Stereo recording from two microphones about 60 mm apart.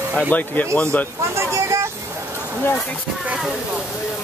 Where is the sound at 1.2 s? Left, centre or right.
Right.